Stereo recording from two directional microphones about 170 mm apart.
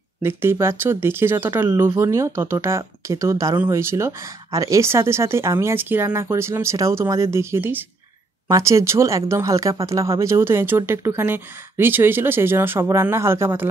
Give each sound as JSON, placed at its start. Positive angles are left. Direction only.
{"t": 0.2, "sound": "speech", "side_deg": -15}